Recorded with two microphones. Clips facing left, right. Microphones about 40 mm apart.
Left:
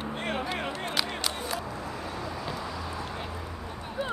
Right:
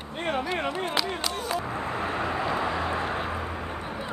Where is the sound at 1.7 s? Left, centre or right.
Right.